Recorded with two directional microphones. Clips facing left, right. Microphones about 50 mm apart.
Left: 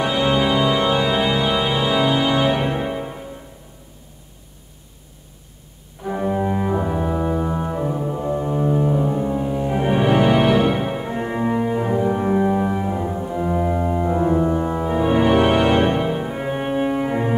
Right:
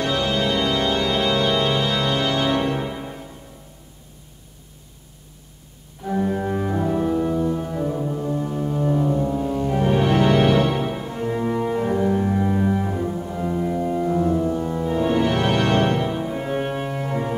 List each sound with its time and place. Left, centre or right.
0.0 s organ: centre
6.0 s organ: centre
13.5 s music: left